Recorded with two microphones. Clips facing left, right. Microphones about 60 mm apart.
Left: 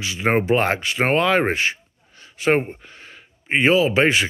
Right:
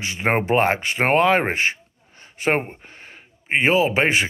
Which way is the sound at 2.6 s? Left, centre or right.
Right.